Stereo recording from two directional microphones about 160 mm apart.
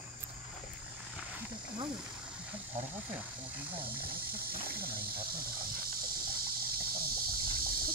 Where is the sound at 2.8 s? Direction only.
50° right (ahead or behind).